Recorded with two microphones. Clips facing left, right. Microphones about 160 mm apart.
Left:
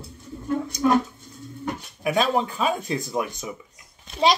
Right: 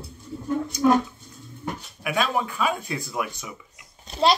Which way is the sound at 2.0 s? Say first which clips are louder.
Left 3 dB; 30° left (ahead or behind).